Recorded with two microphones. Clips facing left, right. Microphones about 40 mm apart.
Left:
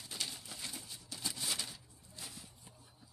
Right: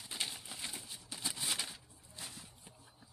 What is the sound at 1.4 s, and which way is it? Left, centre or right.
Bird, right.